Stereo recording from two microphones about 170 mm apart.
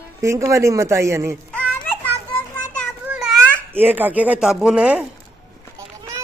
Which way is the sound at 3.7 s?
10° right (ahead or behind).